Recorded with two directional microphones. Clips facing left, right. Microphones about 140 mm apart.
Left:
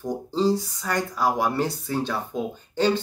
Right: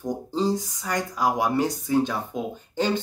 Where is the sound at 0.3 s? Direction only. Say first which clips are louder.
Left 3 dB; 15° right (ahead or behind).